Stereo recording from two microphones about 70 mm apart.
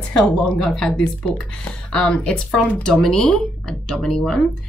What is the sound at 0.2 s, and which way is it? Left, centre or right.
Speech, centre.